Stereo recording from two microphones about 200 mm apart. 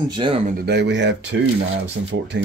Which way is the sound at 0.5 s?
55° right (ahead or behind).